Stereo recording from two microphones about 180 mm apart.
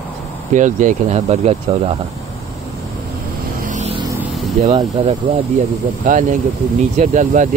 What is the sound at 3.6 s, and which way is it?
Vehicle, 40° right (ahead or behind).